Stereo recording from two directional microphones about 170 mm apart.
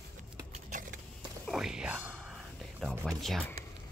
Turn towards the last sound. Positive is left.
turn(degrees=0)  # may be behind; listen again after turning